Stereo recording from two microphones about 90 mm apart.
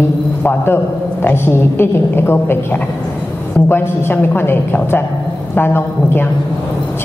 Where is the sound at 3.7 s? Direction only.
25° left (ahead or behind).